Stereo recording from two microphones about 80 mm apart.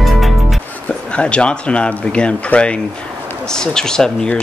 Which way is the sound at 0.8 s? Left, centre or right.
Centre.